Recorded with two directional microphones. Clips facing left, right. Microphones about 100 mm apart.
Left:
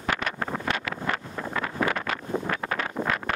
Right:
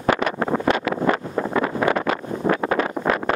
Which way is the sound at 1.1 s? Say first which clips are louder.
Right 8 dB; 25° right (ahead or behind).